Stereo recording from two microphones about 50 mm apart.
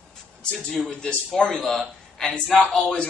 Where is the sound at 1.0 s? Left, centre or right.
Centre.